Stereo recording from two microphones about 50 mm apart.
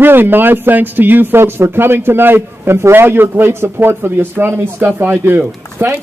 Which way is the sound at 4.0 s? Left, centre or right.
Right.